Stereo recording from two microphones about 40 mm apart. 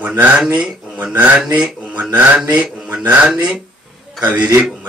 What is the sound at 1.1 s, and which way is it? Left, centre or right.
Speech, right.